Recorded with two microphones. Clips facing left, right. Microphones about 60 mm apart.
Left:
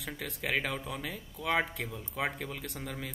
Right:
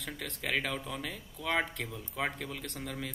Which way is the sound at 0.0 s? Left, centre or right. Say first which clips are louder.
Left 1 dB; centre.